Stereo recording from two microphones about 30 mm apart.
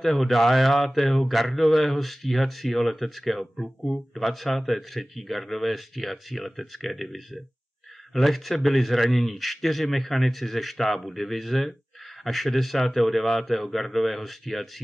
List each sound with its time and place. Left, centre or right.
0.0 s speech: centre